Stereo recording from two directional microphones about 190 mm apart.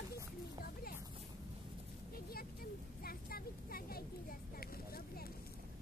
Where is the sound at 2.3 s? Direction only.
50° left (ahead or behind).